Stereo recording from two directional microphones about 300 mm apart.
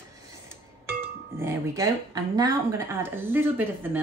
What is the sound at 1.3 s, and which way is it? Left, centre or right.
Speech, centre.